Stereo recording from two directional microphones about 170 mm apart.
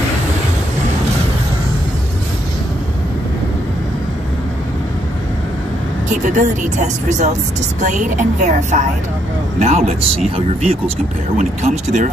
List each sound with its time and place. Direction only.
6.0 s speech: 45° right (ahead or behind)